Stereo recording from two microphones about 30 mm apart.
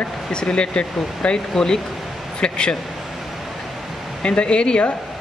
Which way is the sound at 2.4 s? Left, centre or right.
Left.